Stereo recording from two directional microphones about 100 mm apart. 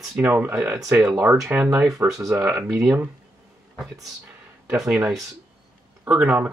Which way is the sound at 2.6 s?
10° right (ahead or behind).